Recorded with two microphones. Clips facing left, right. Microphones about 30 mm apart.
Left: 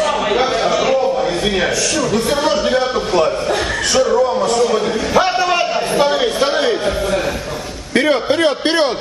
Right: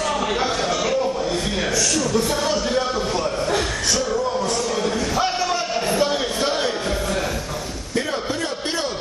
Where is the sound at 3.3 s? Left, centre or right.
Left.